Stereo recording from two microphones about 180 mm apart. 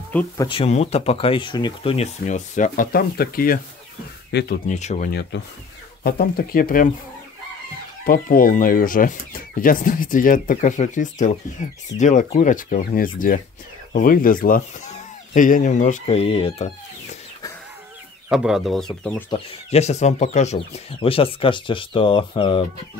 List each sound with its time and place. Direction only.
0.1 s speech: 10° left (ahead or behind)
0.5 s speech: 35° left (ahead or behind); by 3.6 s 55° left (ahead or behind)
4.3 s speech: 65° left (ahead or behind)
4.6 s speech: 40° left (ahead or behind)
6.0 s speech: 55° left (ahead or behind)
8.0 s speech: 50° left (ahead or behind); by 16.6 s 30° left (ahead or behind)
18.3 s speech: 5° right (ahead or behind)
19.3 s speech: 35° left (ahead or behind)